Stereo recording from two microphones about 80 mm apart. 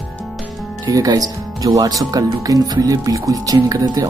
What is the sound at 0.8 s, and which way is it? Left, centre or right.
Speech, right.